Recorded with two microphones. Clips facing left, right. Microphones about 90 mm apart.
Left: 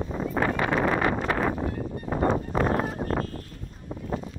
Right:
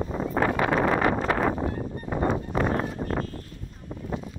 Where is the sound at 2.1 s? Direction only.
40° left (ahead or behind).